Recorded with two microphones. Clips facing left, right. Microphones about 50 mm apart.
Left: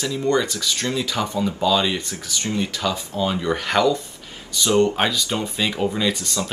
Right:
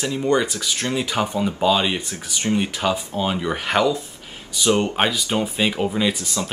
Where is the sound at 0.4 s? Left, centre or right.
Right.